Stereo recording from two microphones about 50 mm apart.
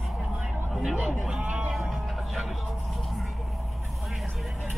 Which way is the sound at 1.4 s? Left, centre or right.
Right.